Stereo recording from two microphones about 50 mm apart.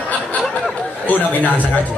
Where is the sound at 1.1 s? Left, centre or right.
Left.